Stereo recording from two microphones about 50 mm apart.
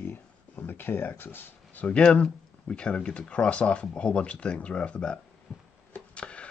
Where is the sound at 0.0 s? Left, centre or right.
Left.